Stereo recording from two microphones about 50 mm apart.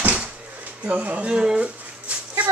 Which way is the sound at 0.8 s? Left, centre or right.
Right.